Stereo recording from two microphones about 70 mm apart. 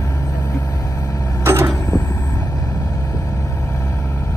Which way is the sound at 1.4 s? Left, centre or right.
Right.